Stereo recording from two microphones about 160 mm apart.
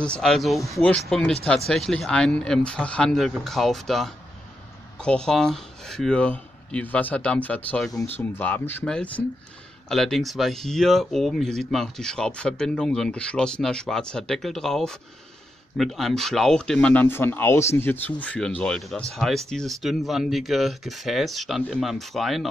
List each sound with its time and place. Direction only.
0.0 s speech: 5° left (ahead or behind)